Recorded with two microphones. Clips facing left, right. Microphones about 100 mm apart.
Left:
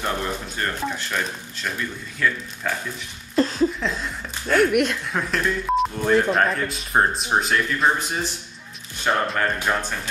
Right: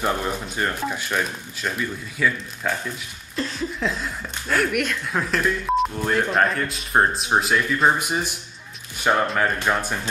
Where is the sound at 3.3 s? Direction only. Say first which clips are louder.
Left 8 dB; 35° left (ahead or behind).